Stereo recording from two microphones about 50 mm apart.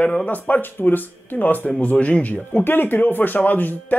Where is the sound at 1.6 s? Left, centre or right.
Left.